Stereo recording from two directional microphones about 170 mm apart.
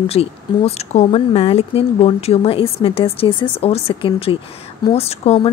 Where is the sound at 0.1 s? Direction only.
35° left (ahead or behind).